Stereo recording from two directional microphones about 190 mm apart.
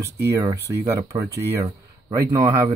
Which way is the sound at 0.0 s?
15° right (ahead or behind).